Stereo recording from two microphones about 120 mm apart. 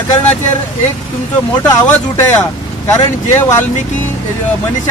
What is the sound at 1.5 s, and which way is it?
Speech, 30° left (ahead or behind).